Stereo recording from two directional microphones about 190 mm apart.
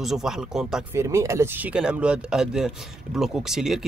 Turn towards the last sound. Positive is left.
turn(degrees=0)  # may be behind; listen again after turning